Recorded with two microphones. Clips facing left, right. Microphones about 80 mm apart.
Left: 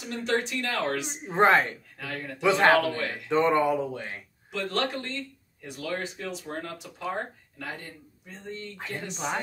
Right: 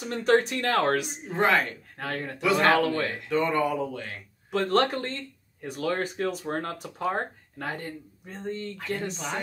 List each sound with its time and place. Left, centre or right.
0.0 s speech: right
1.2 s a man's voice: left
2.0 s speech: right
2.4 s a man's voice: left
4.5 s speech: right